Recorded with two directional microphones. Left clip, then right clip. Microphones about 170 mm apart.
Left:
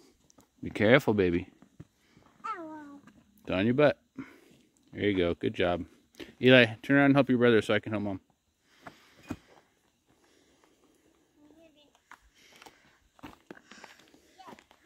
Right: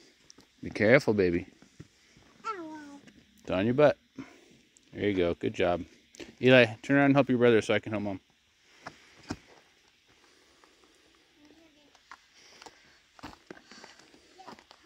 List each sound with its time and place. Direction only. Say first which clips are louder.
0.7 s speech: even; 25° left (ahead or behind)
3.4 s speech: right 1 dB; 25° left (ahead or behind)
13.5 s run: right 1 dB; 10° right (ahead or behind)